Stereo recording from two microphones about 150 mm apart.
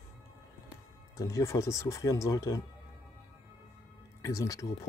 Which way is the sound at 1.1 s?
20° left (ahead or behind).